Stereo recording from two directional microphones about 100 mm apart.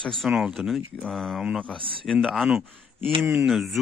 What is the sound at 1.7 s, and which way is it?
Speech, 60° right (ahead or behind).